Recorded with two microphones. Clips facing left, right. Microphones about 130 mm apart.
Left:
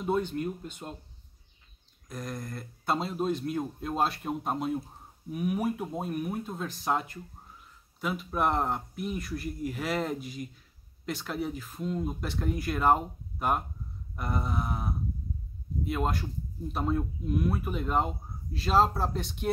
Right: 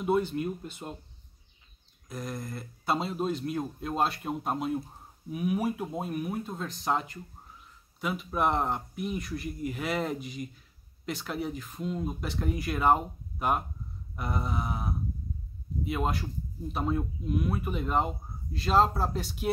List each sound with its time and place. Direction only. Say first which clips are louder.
0.0 s speech: right 2 dB; 5° right (ahead or behind)
2.0 s speech: right 1 dB; 5° right (ahead or behind)
14.1 s a sound: even; centre (ahead or behind)
15.8 s speech: even; centre (ahead or behind)